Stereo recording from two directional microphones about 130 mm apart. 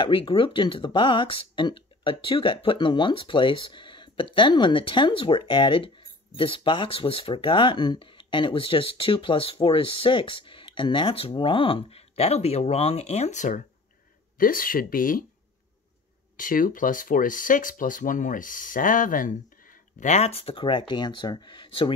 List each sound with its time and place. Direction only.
0.0 s speech: 40° left (ahead or behind); by 13.6 s 65° left (ahead or behind)
14.4 s speech: 90° left
16.3 s speech: 90° left; by 21.9 s 40° left (ahead or behind)